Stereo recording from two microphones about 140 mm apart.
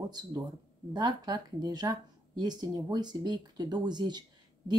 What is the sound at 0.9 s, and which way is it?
Speech, 30° right (ahead or behind).